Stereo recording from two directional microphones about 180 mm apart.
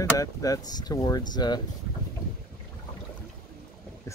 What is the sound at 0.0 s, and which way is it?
Speech, 20° left (ahead or behind).